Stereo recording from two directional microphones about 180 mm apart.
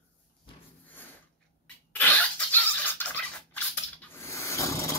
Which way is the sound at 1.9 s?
10° left (ahead or behind).